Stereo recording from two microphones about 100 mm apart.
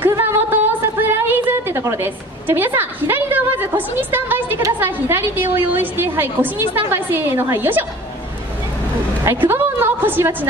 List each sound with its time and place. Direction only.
0.2 s a sound: 20° right (ahead or behind)
1.0 s a woman's voice: 20° right (ahead or behind)
9.2 s a woman's voice: 25° right (ahead or behind)